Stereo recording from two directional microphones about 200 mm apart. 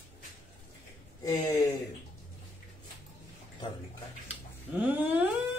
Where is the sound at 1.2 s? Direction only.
20° left (ahead or behind).